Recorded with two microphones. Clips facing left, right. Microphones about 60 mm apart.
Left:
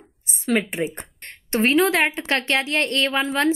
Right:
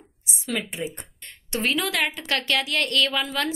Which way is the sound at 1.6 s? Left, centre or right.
Left.